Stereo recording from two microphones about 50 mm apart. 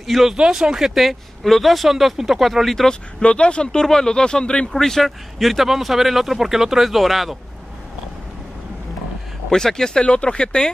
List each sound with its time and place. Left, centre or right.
0.0 s speech: centre
0.4 s speech: centre
3.2 s speech: left; by 7.3 s centre
9.5 s speech: centre